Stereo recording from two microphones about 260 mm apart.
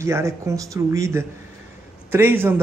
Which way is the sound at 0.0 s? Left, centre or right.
Centre.